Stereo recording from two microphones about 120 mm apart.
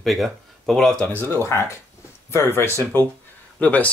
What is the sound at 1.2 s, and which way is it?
Speech, 20° left (ahead or behind).